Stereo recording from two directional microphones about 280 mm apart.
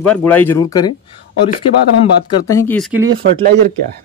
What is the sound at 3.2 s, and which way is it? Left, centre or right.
Speech, right.